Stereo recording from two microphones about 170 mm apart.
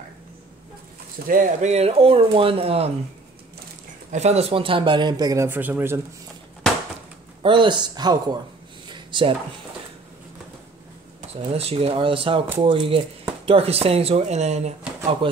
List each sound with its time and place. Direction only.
1.2 s speech: 55° right (ahead or behind); by 2.9 s 35° right (ahead or behind)
4.1 s speech: 40° right (ahead or behind); by 5.9 s 10° right (ahead or behind)
7.4 s speech: 30° right (ahead or behind)
8.8 s a sound: 30° right (ahead or behind)
11.1 s speech: 30° right (ahead or behind)